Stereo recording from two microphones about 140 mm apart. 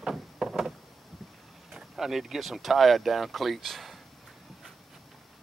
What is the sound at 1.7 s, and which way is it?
Speech, 5° right (ahead or behind).